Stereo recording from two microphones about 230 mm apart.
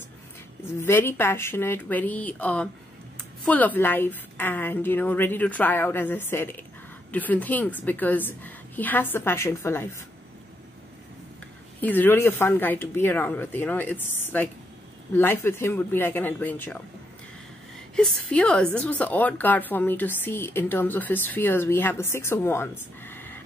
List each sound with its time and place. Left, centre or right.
0.7 s speech: centre
11.8 s speech: centre
17.9 s speech: centre